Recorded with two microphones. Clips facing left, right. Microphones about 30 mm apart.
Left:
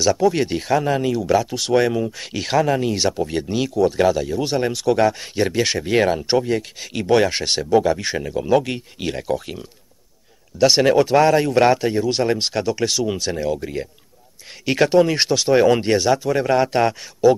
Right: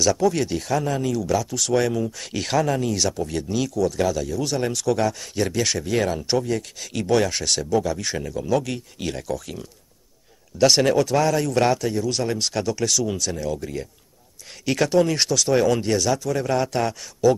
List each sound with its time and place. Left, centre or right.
0.0 s speech: centre; by 8.1 s left
8.1 s speech: left
10.6 s speech: centre
11.0 s speech: left